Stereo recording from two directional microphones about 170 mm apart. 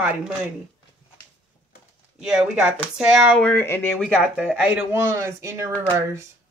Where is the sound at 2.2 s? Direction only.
5° right (ahead or behind); by 4.0 s 10° left (ahead or behind).